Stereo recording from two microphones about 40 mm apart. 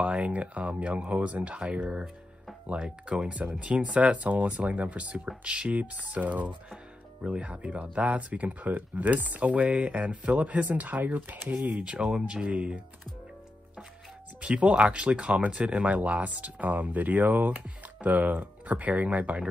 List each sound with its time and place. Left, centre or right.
0.1 s speech: right
11.9 s speech: right
14.4 s speech: right